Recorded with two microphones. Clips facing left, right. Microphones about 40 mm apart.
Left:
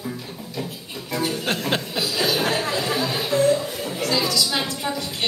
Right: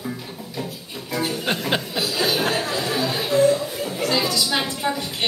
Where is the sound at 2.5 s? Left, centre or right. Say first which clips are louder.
Even; left.